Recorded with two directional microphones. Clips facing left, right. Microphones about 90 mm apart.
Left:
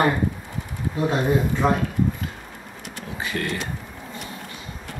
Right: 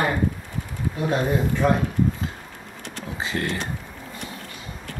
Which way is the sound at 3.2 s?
25° right (ahead or behind).